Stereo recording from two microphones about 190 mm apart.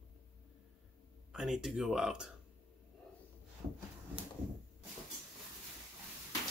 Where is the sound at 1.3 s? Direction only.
Centre (ahead or behind).